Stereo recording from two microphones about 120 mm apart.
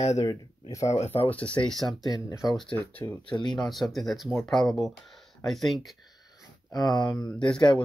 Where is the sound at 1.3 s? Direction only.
10° left (ahead or behind).